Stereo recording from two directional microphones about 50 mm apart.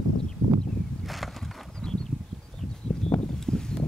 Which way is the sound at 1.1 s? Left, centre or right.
Centre.